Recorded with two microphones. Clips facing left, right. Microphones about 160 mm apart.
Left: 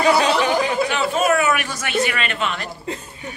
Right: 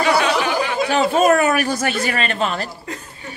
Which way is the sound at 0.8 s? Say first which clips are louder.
Right 4 dB; 40° right (ahead or behind).